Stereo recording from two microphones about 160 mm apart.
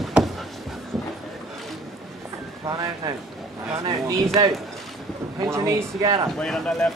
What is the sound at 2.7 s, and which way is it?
Speech, 25° right (ahead or behind).